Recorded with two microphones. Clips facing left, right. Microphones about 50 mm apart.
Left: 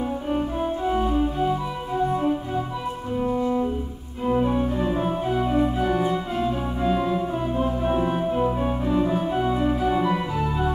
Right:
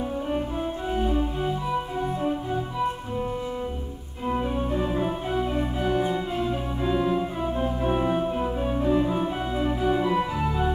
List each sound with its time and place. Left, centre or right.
0.8 s organ: centre
3.2 s music: centre
4.6 s organ: centre
7.6 s music: centre
8.4 s organ: centre
8.8 s music: centre
9.4 s organ: centre